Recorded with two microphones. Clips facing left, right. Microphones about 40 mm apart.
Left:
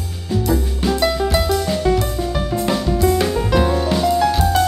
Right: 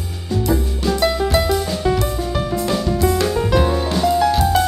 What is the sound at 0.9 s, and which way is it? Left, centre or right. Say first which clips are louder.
Music: even; centre.